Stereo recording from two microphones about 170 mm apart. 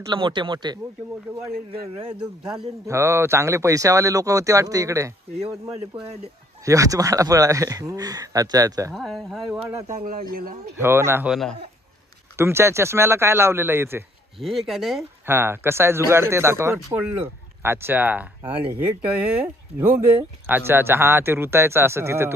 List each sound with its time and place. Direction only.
0.1 s speech: 30° right (ahead or behind)
2.9 s speech: 15° right (ahead or behind)
6.6 s speech: 20° right (ahead or behind)
8.9 s speech: centre (ahead or behind)
10.3 s speech: 60° right (ahead or behind)
10.8 s speech: 15° right (ahead or behind)
11.2 s speech: centre (ahead or behind)
12.4 s speech: 15° right (ahead or behind)
14.4 s speech: centre (ahead or behind)
15.2 s speech: 15° right (ahead or behind)
20.4 s speech: 10° right (ahead or behind)